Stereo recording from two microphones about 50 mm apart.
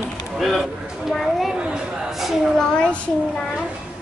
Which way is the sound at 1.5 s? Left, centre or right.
Centre.